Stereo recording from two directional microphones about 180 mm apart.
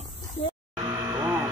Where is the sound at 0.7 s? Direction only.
20° right (ahead or behind).